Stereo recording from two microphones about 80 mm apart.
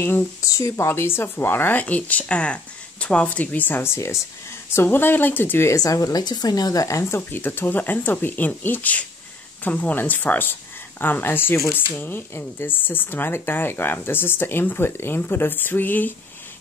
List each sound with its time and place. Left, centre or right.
0.4 s speech: left
5.8 s a woman's voice: left
7.2 s speech: left